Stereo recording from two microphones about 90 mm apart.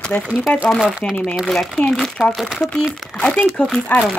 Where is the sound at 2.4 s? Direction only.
5° right (ahead or behind).